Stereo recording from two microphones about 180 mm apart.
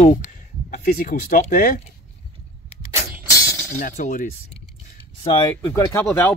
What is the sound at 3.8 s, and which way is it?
Speech, 45° left (ahead or behind).